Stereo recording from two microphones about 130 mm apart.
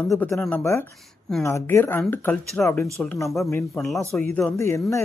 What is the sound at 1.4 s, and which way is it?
Speech, 20° left (ahead or behind).